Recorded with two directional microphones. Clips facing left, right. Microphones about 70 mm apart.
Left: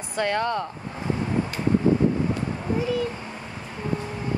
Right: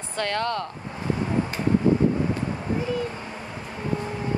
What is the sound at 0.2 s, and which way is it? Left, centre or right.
Speech, centre.